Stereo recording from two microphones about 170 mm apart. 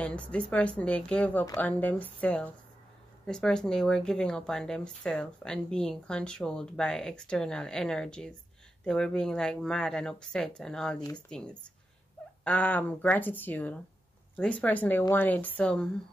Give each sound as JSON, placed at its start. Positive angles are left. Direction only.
{"t": 0.0, "sound": "speech", "side_deg": 5}
{"t": 11.0, "sound": "speech", "side_deg": 25}
{"t": 11.2, "sound": "speech", "side_deg": 5}